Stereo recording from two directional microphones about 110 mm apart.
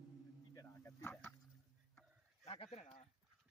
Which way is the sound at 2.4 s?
60° left (ahead or behind).